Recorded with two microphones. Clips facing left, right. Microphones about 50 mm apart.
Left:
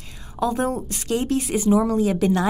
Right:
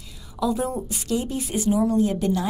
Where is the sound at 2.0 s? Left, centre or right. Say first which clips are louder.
Left 3 dB; left.